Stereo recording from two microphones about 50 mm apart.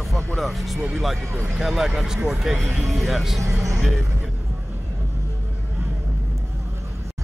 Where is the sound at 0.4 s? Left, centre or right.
Centre.